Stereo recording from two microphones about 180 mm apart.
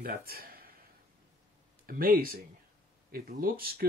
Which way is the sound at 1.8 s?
55° right (ahead or behind).